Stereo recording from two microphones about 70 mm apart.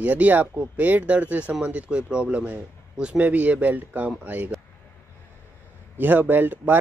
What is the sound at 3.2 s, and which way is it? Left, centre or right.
Speech, right.